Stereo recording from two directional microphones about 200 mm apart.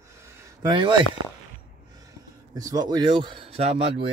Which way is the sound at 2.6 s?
20° right (ahead or behind).